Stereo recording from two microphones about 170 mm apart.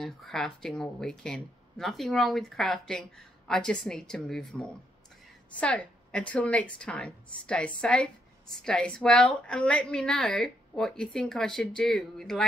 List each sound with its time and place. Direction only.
0.0 s a woman's voice: centre (ahead or behind)